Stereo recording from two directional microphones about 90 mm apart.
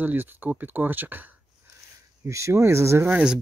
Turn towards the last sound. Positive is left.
turn(degrees=-30)  # may be behind; listen again after turning